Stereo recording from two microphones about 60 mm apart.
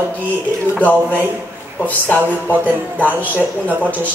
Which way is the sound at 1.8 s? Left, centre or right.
Left.